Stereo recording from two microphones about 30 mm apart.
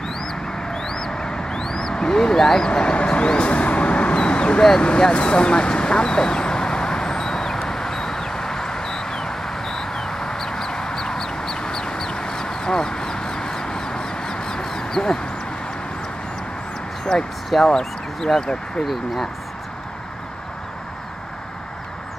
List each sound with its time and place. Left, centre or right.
0.7 s a sound: centre; by 4.1 s left
4.1 s vehicle: left
4.7 s speech: left
5.2 s vehicle: left
17.1 s speech: centre